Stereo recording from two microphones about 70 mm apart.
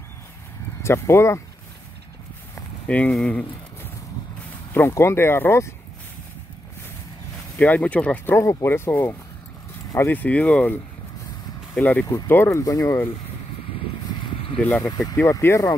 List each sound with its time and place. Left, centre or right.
0.8 s speech: left
2.9 s speech: centre
3.3 s a sound: centre
4.7 s speech: left
7.5 s speech: left
8.3 s speech: left
11.8 s speech: left
12.3 s speech: left
14.8 s speech: left
15.1 s speech: left